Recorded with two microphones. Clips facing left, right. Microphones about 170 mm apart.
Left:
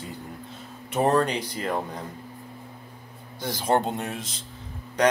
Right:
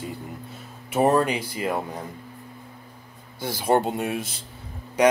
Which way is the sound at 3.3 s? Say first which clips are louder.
Right 2 dB; 10° right (ahead or behind).